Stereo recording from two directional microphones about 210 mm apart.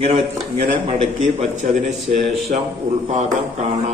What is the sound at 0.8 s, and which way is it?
A man's voice, 30° right (ahead or behind).